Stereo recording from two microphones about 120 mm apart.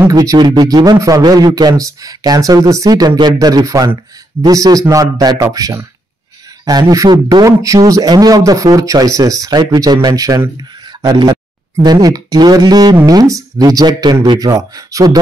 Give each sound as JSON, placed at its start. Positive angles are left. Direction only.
{"t": 0.1, "sound": "a man's voice", "side_deg": -30}